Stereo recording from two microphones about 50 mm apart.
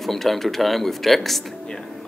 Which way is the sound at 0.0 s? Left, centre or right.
Centre.